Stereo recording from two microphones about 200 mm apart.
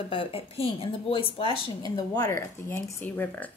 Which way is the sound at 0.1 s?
25° left (ahead or behind).